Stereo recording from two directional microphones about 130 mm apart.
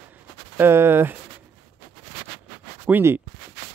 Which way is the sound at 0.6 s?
15° right (ahead or behind).